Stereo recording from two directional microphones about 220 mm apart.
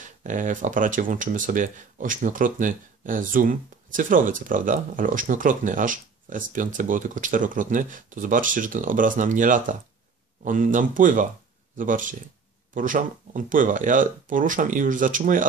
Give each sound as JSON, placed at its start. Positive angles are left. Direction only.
{"t": 0.0, "sound": "speech", "side_deg": -35}